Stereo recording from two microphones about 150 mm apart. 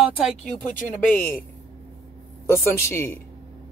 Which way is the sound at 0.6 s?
10° left (ahead or behind).